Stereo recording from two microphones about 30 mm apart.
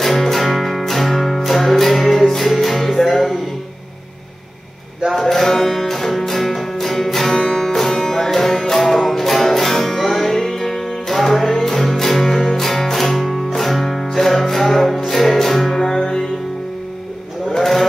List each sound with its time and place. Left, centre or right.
0.0 s music: centre
5.3 s music: centre
10.3 s music: centre
15.8 s music: left
17.5 s cattle: centre